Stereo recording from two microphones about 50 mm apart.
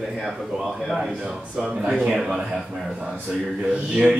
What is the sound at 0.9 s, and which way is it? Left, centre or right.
Speech, centre.